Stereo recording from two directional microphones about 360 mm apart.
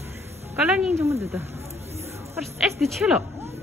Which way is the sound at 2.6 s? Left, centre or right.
Centre.